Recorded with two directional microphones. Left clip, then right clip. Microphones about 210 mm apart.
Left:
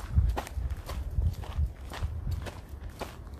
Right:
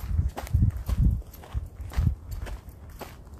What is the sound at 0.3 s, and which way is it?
Walk, 5° right (ahead or behind).